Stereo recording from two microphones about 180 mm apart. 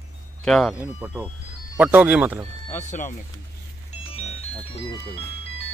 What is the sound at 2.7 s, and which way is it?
Speech, 45° left (ahead or behind).